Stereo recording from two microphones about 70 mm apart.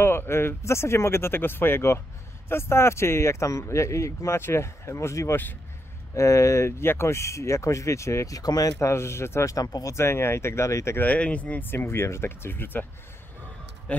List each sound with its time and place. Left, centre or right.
0.0 s speech: left
8.4 s speech: left
8.8 s speech: left
9.9 s speech: left
11.0 s speech: centre
13.9 s music: centre